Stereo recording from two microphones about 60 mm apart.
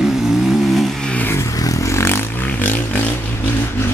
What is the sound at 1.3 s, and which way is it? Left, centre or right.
Vehicle, left.